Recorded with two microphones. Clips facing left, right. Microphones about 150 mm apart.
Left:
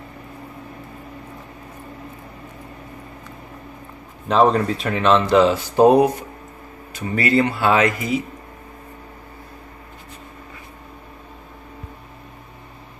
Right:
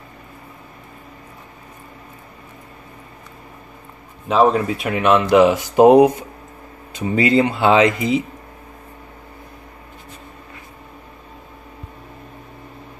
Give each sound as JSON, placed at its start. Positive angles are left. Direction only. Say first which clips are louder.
{"t": 4.3, "sound": "speech", "louder": "right 1 dB", "side_deg": -5}